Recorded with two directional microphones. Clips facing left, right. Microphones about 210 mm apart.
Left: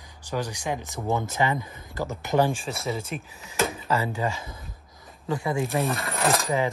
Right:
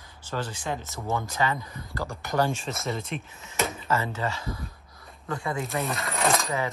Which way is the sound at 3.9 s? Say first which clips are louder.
Left 2 dB; 15° left (ahead or behind).